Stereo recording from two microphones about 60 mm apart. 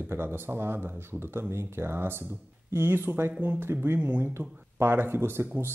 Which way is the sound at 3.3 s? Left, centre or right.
Right.